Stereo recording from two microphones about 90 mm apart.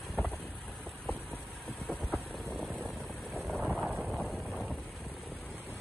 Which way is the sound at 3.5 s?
Centre (ahead or behind).